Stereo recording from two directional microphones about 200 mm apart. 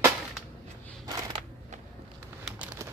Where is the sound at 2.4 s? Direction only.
5° right (ahead or behind).